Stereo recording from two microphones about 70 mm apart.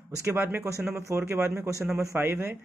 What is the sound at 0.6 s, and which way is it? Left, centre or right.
Speech, right.